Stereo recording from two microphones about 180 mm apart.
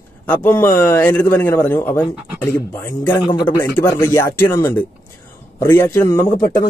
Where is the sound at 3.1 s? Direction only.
25° left (ahead or behind).